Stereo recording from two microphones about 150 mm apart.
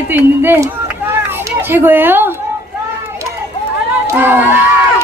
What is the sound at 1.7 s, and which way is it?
Speech, 15° right (ahead or behind).